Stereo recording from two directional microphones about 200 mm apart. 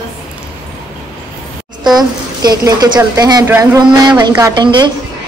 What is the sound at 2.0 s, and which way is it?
A woman's voice, 20° right (ahead or behind).